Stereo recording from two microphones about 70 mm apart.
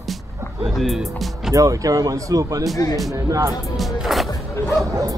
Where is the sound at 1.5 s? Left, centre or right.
Right.